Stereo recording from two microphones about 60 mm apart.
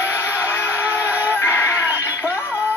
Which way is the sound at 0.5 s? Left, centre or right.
Left.